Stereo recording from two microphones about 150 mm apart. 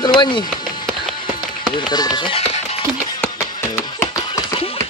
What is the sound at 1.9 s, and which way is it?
Speech, 30° left (ahead or behind).